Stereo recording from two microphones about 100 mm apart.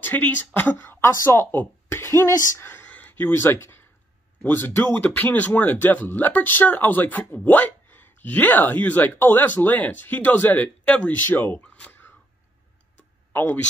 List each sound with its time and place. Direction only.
0.0 s speech: 15° left (ahead or behind)
13.3 s speech: 20° left (ahead or behind)